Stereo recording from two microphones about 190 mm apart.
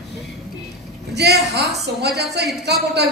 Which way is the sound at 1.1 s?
60° right (ahead or behind).